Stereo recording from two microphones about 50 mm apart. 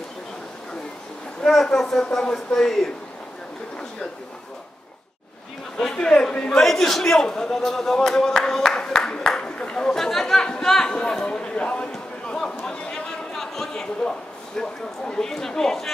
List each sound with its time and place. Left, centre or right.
1.7 s a man's voice: centre
5.8 s a man's voice: centre
9.4 s a sound: left
9.8 s a man's voice: centre
12.4 s a sound: centre
14.6 s a man's voice: centre